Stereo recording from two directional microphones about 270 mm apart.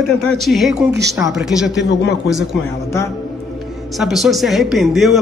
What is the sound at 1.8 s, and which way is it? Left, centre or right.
Speech, left.